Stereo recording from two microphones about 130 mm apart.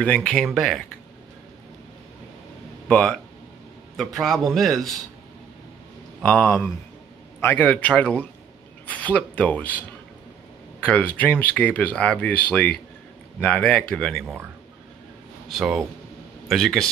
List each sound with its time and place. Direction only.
0.0 s a man's voice: 10° left (ahead or behind)
2.9 s a man's voice: 5° left (ahead or behind)
6.2 s speech: 15° left (ahead or behind)
15.4 s speech: centre (ahead or behind)